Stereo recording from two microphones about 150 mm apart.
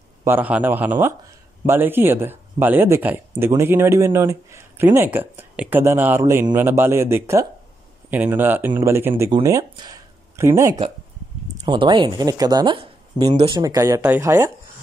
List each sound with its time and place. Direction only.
0.2 s speech: 10° right (ahead or behind)
11.5 s speech: 30° right (ahead or behind)